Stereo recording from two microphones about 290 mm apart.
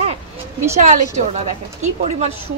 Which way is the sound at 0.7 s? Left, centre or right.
Right.